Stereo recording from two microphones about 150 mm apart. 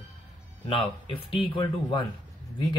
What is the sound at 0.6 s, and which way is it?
Speech, 35° left (ahead or behind).